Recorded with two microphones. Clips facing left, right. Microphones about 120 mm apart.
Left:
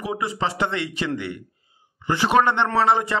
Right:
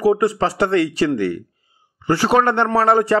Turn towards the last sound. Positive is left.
turn(degrees=-40)  # may be behind; listen again after turning